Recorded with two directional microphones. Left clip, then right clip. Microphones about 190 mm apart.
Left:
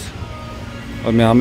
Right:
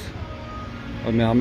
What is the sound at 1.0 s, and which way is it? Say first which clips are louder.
Speech: left 7 dB; 15° left (ahead or behind).